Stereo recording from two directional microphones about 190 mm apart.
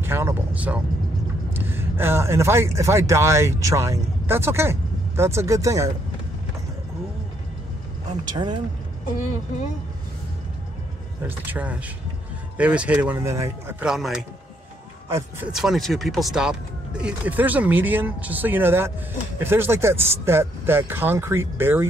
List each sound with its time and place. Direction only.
0.0 s a sound: 10° right (ahead or behind)
1.5 s speech: 10° right (ahead or behind)
8.3 s speech: 25° right (ahead or behind)
11.2 s speech: 10° right (ahead or behind)